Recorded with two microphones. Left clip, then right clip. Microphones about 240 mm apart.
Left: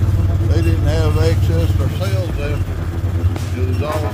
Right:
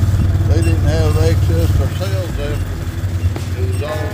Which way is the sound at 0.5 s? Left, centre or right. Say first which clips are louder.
Right 1 dB; centre.